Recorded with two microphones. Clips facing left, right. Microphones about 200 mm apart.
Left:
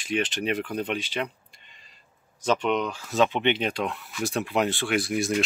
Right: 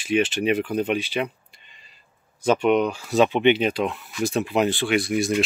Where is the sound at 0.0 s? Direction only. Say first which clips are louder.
Right 6 dB; 5° right (ahead or behind).